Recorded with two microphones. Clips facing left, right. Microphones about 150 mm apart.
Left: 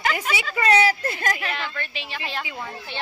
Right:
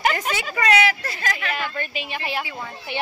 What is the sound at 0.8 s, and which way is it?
Speech, 50° left (ahead or behind).